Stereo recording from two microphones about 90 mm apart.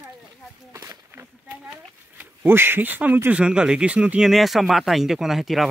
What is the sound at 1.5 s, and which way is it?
Speech, 15° right (ahead or behind).